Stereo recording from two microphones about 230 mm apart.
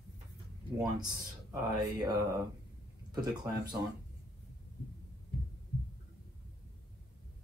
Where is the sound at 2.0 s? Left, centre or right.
Centre.